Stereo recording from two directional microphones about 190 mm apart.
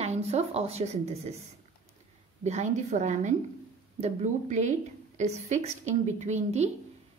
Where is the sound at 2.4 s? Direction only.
35° right (ahead or behind).